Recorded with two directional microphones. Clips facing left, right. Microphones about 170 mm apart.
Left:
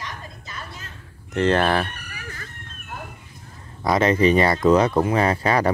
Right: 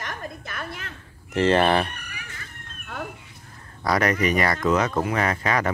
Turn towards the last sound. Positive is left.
turn(degrees=35)  # may be behind; listen again after turning